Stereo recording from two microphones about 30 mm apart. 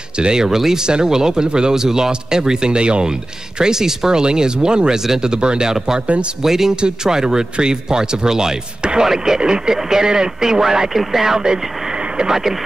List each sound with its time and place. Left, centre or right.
0.2 s speech: right
0.5 s speech: centre
6.7 s speech: right
9.4 s speech: right
10.9 s speech: centre